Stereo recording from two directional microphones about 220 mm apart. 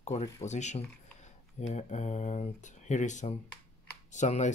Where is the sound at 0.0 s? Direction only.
30° left (ahead or behind).